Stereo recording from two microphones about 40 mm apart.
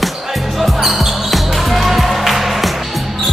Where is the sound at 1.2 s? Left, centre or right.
Centre.